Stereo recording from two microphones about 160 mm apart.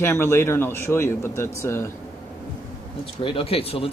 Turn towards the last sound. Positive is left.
turn(degrees=35)  # may be behind; listen again after turning